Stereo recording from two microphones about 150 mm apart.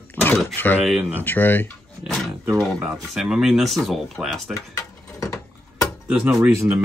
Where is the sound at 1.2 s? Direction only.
15° left (ahead or behind).